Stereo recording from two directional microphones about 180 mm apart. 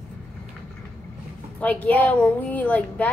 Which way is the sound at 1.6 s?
10° left (ahead or behind).